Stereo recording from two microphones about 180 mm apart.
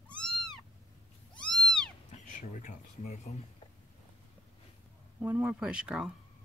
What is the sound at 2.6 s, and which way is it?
Speech, 40° left (ahead or behind).